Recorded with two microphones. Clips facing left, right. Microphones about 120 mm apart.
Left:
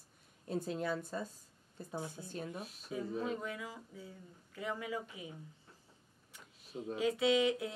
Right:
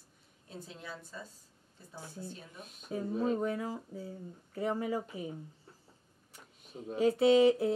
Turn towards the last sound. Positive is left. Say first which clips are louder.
# right 7 dB
turn(degrees=-40)  # may be behind; listen again after turning